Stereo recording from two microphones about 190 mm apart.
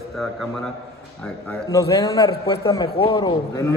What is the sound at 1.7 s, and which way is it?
A man's voice, 20° left (ahead or behind).